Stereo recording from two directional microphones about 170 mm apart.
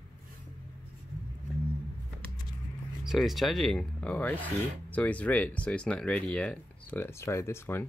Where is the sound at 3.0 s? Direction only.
Centre (ahead or behind); by 7.8 s 15° left (ahead or behind).